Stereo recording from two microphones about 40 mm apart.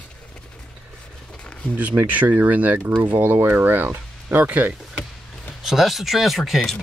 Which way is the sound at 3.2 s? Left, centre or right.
Right.